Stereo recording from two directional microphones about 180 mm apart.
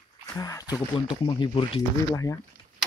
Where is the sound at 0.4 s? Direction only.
20° left (ahead or behind).